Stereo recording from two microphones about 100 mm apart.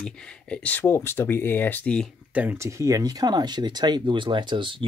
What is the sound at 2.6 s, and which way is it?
Speech, 30° right (ahead or behind).